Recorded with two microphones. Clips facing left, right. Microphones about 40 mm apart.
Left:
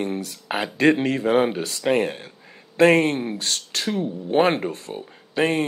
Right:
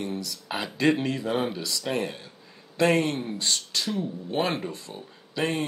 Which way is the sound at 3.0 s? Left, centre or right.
Left.